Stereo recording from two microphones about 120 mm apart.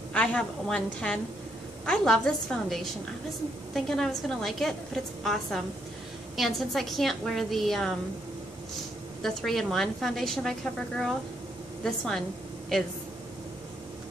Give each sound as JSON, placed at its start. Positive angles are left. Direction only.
{"t": 0.1, "sound": "a woman's voice", "side_deg": 10}
{"t": 9.2, "sound": "a woman's voice", "side_deg": 5}